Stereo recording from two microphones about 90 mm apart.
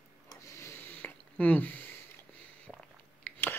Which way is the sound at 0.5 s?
25° left (ahead or behind).